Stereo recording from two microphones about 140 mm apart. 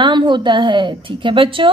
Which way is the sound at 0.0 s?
35° right (ahead or behind).